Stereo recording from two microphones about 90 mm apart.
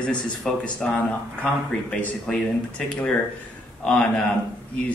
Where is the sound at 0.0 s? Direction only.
10° left (ahead or behind).